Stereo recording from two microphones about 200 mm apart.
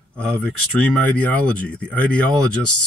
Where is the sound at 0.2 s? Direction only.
5° left (ahead or behind).